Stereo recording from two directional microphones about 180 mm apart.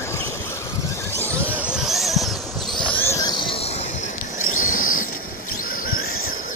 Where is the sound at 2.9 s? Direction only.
15° left (ahead or behind).